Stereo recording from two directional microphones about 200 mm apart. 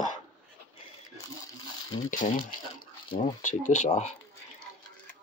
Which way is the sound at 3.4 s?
35° left (ahead or behind).